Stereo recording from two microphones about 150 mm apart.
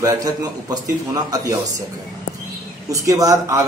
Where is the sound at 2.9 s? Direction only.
20° right (ahead or behind).